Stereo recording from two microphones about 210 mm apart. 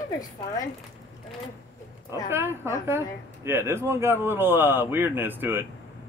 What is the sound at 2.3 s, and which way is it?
Speech, 10° right (ahead or behind).